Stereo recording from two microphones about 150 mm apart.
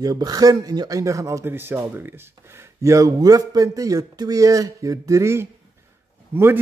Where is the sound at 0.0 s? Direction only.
25° right (ahead or behind).